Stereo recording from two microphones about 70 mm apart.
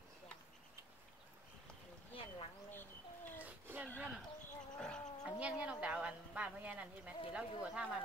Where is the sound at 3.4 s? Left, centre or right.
Right.